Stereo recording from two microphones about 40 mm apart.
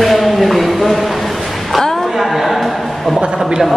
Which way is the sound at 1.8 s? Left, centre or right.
Centre.